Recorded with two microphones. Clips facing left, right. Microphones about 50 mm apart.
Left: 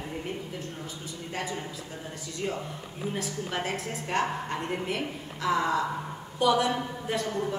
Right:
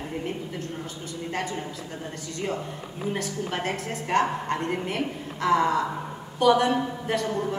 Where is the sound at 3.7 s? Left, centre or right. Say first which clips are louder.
Right 5 dB; right.